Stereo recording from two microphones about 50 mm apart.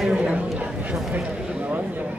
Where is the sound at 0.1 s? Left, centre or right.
Right.